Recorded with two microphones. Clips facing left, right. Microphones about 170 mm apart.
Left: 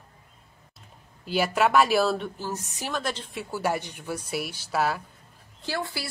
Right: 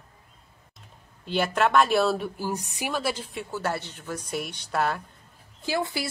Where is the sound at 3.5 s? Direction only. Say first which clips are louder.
Left 3 dB; 10° left (ahead or behind).